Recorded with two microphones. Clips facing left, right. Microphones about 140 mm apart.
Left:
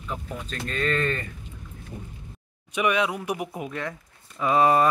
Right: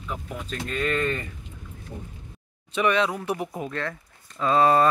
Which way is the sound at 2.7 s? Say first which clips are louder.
Right 1 dB; 10° left (ahead or behind).